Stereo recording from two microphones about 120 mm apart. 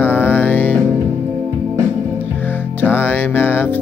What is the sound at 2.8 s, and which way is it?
Music, 15° left (ahead or behind).